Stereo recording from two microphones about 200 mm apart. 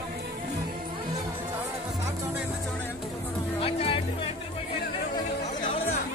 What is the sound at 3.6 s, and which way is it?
Music, 30° left (ahead or behind).